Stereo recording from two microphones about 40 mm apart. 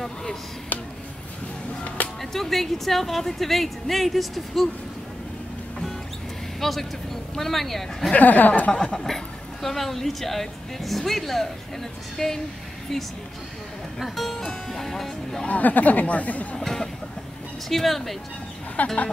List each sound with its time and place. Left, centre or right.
0.0 s speech: centre
2.3 s a woman's voice: centre
6.6 s a woman's voice: centre
8.1 s speech: left
8.7 s a woman's voice: centre
13.9 s a woman's voice: centre
14.7 s music: centre
15.4 s speech: left
16.5 s a woman's voice: centre
18.8 s speech: left